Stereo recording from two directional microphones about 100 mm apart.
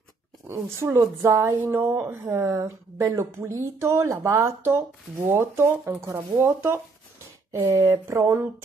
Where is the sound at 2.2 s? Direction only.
30° right (ahead or behind).